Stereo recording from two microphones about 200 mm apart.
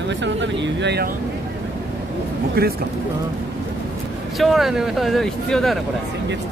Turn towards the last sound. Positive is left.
turn(degrees=0)  # may be behind; listen again after turning